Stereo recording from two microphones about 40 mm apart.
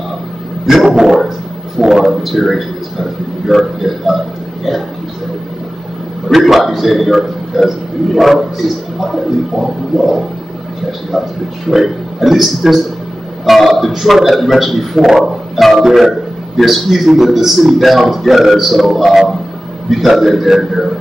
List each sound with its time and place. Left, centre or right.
0.8 s dog: centre
1.8 s a man's voice: centre
6.2 s a man's voice: centre